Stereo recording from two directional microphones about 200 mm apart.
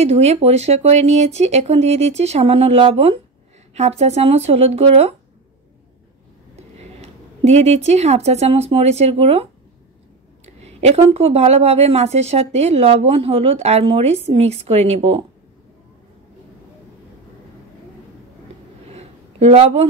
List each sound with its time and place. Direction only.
0.0 s a woman's voice: 30° right (ahead or behind)
7.0 s a woman's voice: 35° right (ahead or behind)
18.9 s a sound: 30° right (ahead or behind)